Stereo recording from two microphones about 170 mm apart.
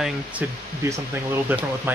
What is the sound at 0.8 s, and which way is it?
Speech, 15° right (ahead or behind).